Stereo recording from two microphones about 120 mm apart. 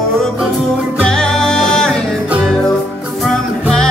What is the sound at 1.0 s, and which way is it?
Music, 5° left (ahead or behind).